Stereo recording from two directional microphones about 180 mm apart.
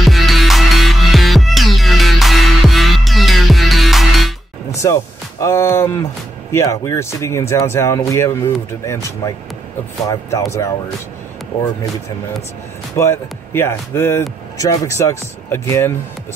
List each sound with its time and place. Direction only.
0.0 s music: centre (ahead or behind)
4.8 s speech: 15° left (ahead or behind)
12.9 s speech: 15° left (ahead or behind)